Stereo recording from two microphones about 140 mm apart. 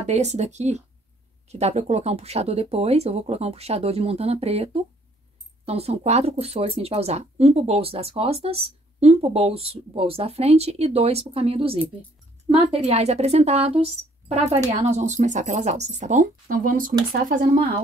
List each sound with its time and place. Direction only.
0.0 s speech: 50° right (ahead or behind); by 17.6 s 75° right (ahead or behind)